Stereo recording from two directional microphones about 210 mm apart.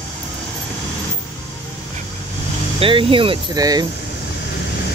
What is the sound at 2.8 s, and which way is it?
Speech, 25° right (ahead or behind).